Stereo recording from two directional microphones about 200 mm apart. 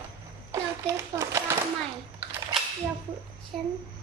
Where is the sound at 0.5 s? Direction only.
15° right (ahead or behind).